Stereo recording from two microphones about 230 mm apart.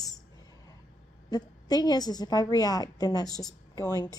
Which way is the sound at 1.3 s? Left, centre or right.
Centre.